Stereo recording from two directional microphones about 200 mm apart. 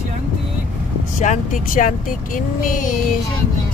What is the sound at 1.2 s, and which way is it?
Speech, 40° left (ahead or behind).